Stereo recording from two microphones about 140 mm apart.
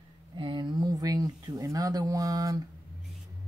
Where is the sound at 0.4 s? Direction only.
35° right (ahead or behind).